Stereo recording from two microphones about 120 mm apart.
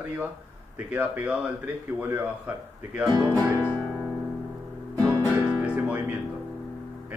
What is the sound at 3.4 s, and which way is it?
Music, 20° left (ahead or behind).